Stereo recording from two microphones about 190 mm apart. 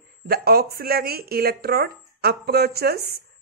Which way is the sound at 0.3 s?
55° right (ahead or behind).